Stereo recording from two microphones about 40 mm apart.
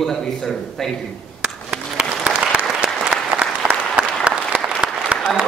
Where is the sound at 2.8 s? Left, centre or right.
Right.